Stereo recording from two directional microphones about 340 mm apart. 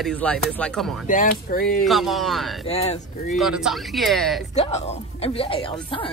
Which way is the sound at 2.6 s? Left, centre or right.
Centre.